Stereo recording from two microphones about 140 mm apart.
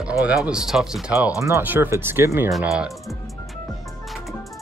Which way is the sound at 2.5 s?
5° right (ahead or behind).